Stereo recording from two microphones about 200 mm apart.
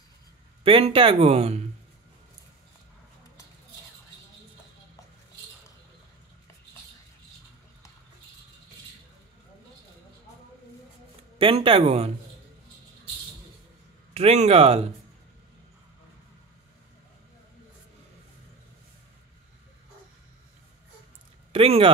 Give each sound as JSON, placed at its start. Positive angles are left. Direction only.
{"t": 0.7, "sound": "speech", "side_deg": -25}
{"t": 11.3, "sound": "speech", "side_deg": -25}
{"t": 14.1, "sound": "speech", "side_deg": -30}
{"t": 21.5, "sound": "speech", "side_deg": -30}